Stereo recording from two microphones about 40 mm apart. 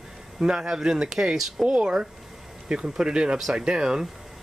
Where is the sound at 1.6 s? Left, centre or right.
Centre.